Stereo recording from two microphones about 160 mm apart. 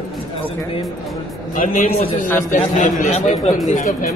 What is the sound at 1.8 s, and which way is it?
A man's voice, 40° left (ahead or behind).